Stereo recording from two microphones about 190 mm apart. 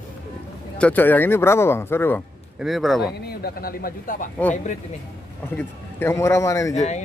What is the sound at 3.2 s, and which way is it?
Speech, 50° left (ahead or behind).